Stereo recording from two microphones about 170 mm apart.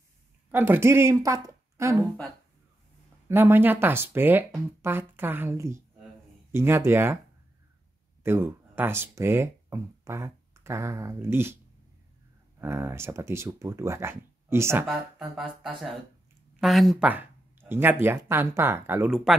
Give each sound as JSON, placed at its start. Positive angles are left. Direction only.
{"t": 0.5, "sound": "speech", "side_deg": -10}
{"t": 3.3, "sound": "speech", "side_deg": -15}
{"t": 8.2, "sound": "speech", "side_deg": -15}
{"t": 12.5, "sound": "speech", "side_deg": -15}
{"t": 14.9, "sound": "a sound", "side_deg": 0}
{"t": 17.1, "sound": "speech", "side_deg": -10}